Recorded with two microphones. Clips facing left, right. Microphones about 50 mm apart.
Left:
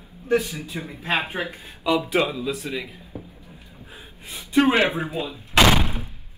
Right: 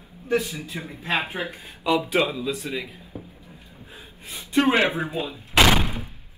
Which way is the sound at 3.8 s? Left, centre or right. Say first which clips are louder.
Left 1 dB; centre.